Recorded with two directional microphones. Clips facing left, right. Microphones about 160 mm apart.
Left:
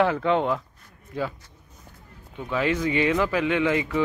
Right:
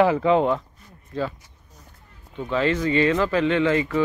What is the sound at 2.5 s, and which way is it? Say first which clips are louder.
Speech: right 3 dB; 10° left (ahead or behind).